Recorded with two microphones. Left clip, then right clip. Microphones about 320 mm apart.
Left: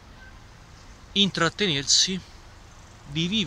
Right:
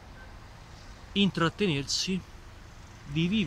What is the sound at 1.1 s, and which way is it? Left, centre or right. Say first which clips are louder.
Speech: left 5 dB; centre.